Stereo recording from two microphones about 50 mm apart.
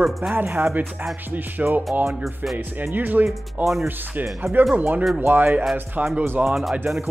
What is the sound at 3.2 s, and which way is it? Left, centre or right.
Speech, centre.